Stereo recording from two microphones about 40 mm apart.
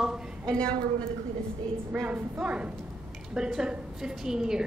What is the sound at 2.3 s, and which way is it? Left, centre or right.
Speech, right.